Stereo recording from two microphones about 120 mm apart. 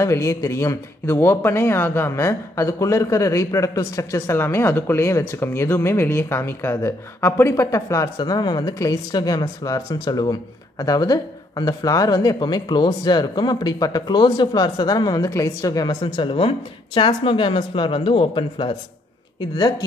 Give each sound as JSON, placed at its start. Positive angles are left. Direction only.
{"t": 0.0, "sound": "speech", "side_deg": 20}
{"t": 8.2, "sound": "speech", "side_deg": 35}
{"t": 16.0, "sound": "speech", "side_deg": 45}